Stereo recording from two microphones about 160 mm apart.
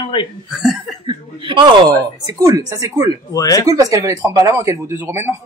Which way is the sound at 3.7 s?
20° right (ahead or behind).